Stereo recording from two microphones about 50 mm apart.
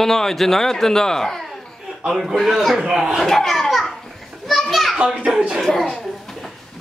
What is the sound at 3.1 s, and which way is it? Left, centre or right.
Children playing, centre.